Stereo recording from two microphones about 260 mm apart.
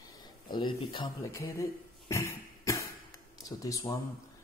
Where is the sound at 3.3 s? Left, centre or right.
Centre.